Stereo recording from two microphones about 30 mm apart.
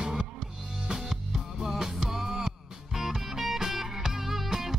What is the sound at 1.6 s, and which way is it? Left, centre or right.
Music, centre.